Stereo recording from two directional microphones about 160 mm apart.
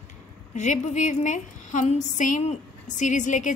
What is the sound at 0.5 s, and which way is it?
A woman's voice, 50° left (ahead or behind).